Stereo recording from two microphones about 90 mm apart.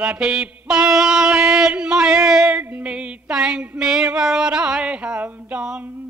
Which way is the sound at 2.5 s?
20° right (ahead or behind).